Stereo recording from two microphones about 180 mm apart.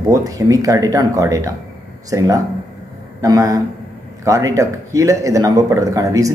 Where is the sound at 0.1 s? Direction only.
20° right (ahead or behind).